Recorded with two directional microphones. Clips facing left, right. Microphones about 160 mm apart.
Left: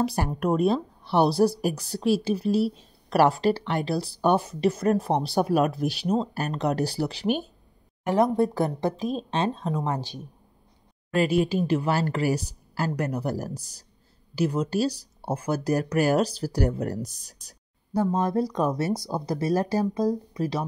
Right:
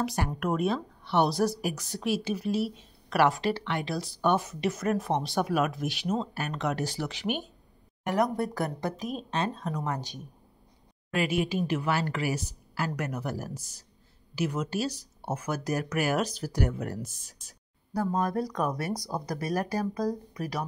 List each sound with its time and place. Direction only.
0.0 s speech: 35° left (ahead or behind)
17.9 s speech: 25° left (ahead or behind)